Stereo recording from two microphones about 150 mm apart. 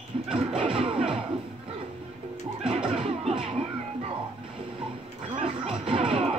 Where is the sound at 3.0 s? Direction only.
35° right (ahead or behind).